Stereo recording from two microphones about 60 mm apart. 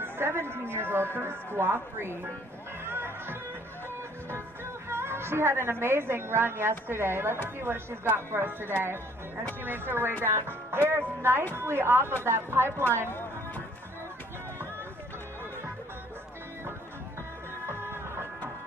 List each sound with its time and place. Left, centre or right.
0.0 s speech: right
2.8 s music: right
4.8 s a woman's voice: right
17.6 s music: right